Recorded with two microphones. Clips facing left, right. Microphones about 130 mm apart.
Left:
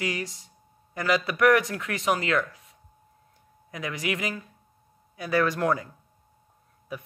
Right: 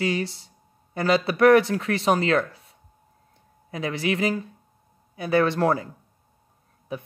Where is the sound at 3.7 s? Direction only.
30° right (ahead or behind).